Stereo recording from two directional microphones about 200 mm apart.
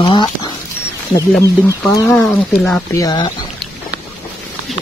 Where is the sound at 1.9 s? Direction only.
15° left (ahead or behind).